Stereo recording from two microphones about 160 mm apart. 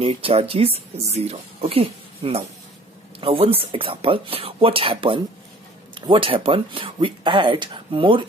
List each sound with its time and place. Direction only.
0.0 s a woman's voice: 35° right (ahead or behind)